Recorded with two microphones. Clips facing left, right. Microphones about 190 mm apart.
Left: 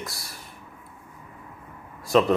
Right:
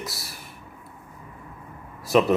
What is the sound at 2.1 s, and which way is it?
Speech, 10° right (ahead or behind).